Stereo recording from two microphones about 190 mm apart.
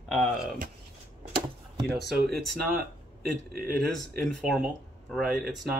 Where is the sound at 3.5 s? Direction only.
50° right (ahead or behind).